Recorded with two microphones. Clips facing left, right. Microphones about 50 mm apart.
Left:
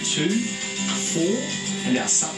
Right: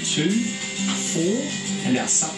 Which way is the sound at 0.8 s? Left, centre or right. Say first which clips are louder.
Right 1 dB; centre.